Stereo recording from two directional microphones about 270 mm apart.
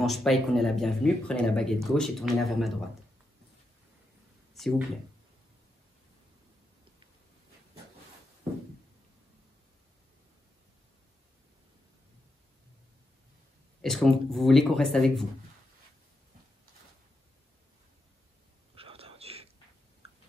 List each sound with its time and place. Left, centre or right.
0.0 s speech: centre
4.6 s speech: centre
13.7 s a sound: centre
14.3 s speech: centre
18.8 s whispering: right